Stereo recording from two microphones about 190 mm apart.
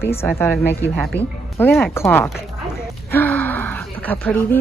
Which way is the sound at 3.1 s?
10° left (ahead or behind).